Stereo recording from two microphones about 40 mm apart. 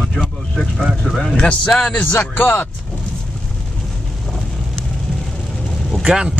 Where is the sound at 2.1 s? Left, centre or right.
Left.